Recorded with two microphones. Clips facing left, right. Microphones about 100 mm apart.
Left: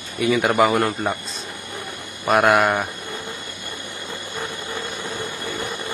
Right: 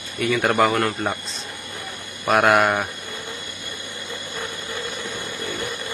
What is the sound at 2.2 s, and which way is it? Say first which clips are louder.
Speech: left 1 dB; centre (ahead or behind).